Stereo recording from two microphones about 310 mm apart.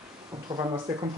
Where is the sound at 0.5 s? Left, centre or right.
Centre.